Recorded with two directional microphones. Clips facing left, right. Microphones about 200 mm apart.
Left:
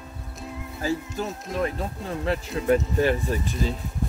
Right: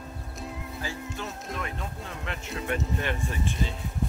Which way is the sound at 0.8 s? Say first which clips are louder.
Left 11 dB; 40° left (ahead or behind).